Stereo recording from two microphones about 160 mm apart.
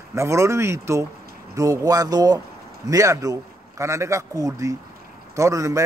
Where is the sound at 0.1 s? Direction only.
20° right (ahead or behind).